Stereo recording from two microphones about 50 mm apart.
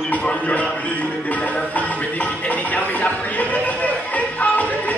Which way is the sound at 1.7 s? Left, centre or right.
Left.